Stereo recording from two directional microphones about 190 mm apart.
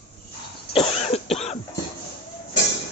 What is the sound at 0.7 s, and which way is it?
Cough, 35° left (ahead or behind).